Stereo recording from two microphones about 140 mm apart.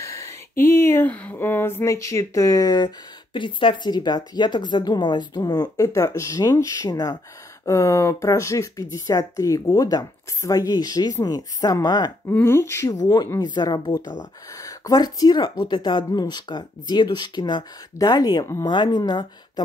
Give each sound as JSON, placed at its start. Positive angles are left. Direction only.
{"t": 0.2, "sound": "speech", "side_deg": 15}
{"t": 12.3, "sound": "speech", "side_deg": 15}